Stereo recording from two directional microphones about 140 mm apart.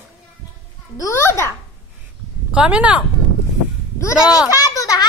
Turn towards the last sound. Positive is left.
turn(degrees=25)  # may be behind; listen again after turning